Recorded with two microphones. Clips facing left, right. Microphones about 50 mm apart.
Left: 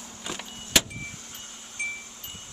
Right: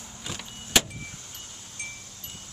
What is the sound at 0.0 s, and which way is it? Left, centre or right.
Vehicle, centre.